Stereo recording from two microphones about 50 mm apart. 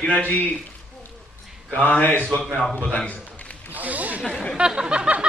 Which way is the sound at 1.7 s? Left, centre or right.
Left.